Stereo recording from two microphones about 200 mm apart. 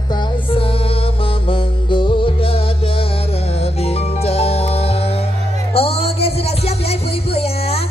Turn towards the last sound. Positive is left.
turn(degrees=30)  # may be behind; listen again after turning